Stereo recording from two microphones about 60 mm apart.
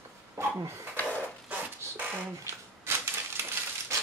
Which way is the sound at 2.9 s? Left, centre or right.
Right.